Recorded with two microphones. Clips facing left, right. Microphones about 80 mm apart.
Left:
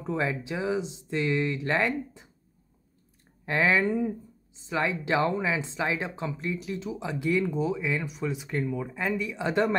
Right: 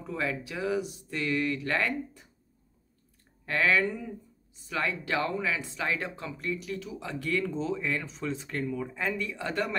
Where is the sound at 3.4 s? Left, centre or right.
Left.